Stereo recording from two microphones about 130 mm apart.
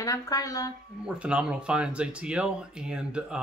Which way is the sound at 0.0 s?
25° left (ahead or behind).